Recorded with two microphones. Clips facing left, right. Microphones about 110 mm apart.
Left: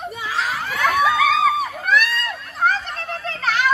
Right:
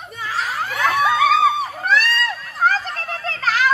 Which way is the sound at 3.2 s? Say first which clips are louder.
Right 1 dB; 40° right (ahead or behind).